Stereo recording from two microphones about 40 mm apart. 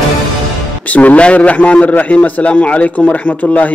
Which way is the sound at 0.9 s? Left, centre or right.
Left.